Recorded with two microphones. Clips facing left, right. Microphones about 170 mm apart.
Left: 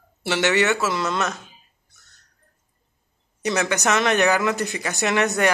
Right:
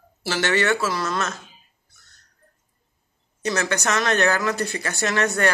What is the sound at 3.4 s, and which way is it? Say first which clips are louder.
Speech: left 2 dB; 20° left (ahead or behind).